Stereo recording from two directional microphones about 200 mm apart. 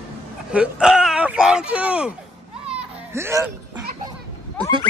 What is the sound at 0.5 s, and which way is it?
Speech, 5° right (ahead or behind).